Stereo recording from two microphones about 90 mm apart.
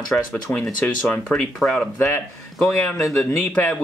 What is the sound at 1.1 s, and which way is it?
Speech, 10° left (ahead or behind).